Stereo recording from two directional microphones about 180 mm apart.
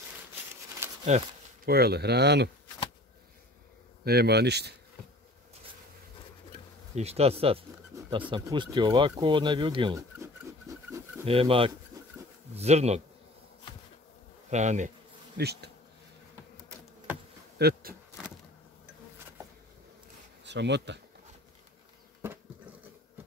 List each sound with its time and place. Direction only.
0.8 s a sound: 10° right (ahead or behind)
1.7 s speech: 60° right (ahead or behind)
4.0 s speech: 60° right (ahead or behind)
7.0 s speech: 35° right (ahead or behind)
7.9 s a sound: 15° right (ahead or behind)
8.3 s speech: 25° right (ahead or behind)
10.7 s a sound: 20° right (ahead or behind)
11.2 s speech: 30° right (ahead or behind)
11.9 s bee: 20° right (ahead or behind)
12.5 s speech: 35° right (ahead or behind)
14.5 s speech: 40° right (ahead or behind)
15.3 s speech: 65° right (ahead or behind)
17.6 s speech: 65° right (ahead or behind)
20.4 s speech: 75° right (ahead or behind)